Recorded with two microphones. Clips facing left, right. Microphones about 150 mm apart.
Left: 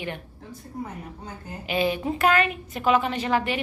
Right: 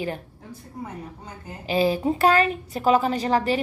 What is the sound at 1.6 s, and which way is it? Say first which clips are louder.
A woman's voice: right 4 dB; 35° right (ahead or behind).